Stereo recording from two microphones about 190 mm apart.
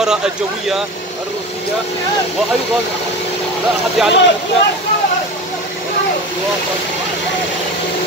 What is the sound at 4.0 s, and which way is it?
Speech, centre (ahead or behind).